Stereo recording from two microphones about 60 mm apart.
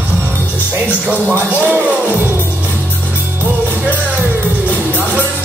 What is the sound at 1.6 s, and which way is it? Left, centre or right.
Music, right.